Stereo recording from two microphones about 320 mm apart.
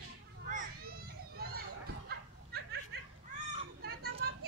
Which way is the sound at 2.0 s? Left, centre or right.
Right.